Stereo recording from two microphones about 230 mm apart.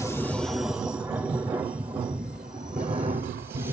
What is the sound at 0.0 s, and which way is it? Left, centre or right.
Train, centre.